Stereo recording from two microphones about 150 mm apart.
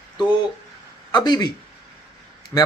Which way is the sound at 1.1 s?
30° left (ahead or behind).